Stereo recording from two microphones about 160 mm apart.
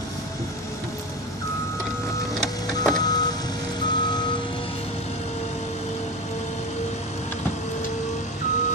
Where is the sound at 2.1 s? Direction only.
25° left (ahead or behind).